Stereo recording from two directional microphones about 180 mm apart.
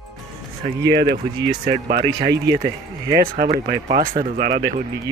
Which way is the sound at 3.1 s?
50° right (ahead or behind).